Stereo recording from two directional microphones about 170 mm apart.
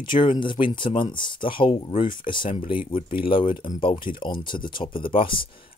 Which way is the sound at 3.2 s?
30° left (ahead or behind).